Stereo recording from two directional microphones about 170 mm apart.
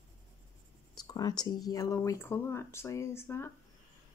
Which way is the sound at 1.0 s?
25° left (ahead or behind).